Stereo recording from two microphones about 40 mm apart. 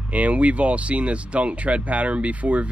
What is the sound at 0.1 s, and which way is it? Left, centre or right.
Speech, right.